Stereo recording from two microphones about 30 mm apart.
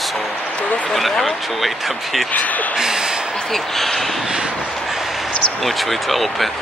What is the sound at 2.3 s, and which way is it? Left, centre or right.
Speech, left.